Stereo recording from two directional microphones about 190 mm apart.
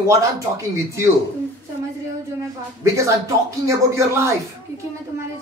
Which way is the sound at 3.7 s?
15° right (ahead or behind).